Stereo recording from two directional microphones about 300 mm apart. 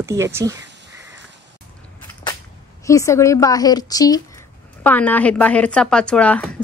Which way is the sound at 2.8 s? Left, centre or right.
Centre.